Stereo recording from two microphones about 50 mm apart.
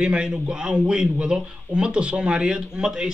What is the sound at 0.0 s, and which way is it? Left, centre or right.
A man's voice, right.